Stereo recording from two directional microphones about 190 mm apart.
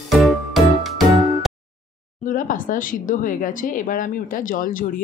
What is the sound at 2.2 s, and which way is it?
Speech, 45° left (ahead or behind).